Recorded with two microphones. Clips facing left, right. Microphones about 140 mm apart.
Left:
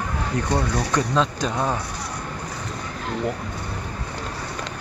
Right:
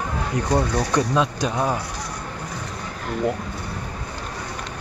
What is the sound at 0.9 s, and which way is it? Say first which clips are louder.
Speech: right 1 dB; 15° right (ahead or behind).